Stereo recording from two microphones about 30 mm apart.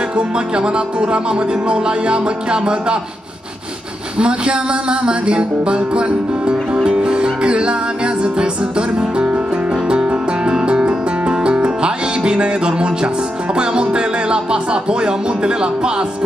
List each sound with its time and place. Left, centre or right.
0.1 s music: right
4.2 s music: right